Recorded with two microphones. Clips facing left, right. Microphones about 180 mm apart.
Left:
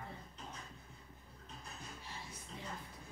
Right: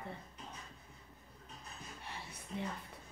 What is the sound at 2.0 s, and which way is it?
Music, 65° right (ahead or behind).